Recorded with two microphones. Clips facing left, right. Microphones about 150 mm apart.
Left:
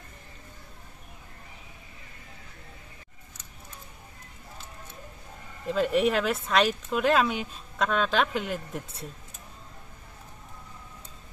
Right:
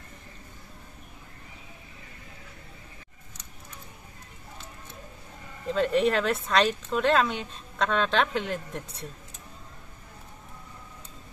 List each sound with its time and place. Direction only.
5.7 s speech: 5° left (ahead or behind)